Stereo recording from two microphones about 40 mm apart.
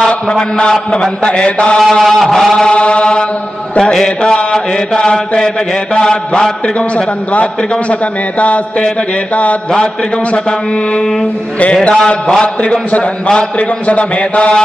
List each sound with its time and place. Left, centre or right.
0.0 s a man's voice: centre
1.2 s mantra: left
1.8 s a sound: centre
2.7 s mantra: left
7.9 s a man's voice: left
11.9 s mantra: left
12.9 s a man's voice: left